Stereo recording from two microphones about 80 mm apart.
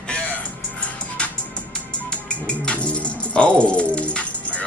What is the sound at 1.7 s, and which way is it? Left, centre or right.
Music, centre.